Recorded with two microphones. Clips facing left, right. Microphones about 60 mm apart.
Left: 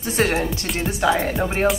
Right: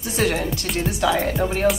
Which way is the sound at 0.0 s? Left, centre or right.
Left.